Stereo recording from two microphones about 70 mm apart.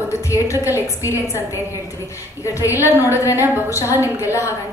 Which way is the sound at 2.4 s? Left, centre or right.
Left.